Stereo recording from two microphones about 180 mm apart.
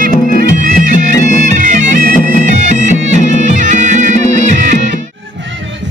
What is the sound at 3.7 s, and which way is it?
Music, 45° right (ahead or behind).